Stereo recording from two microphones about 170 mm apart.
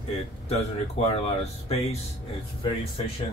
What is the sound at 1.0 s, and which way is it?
Speech, 40° left (ahead or behind).